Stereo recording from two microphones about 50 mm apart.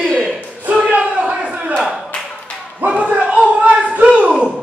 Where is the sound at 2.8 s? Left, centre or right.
Right.